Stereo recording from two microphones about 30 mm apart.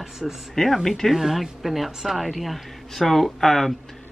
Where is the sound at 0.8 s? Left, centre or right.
Centre.